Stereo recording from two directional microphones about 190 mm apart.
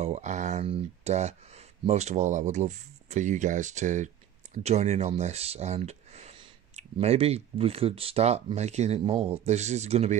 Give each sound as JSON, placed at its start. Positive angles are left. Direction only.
{"t": 0.0, "sound": "speech", "side_deg": -40}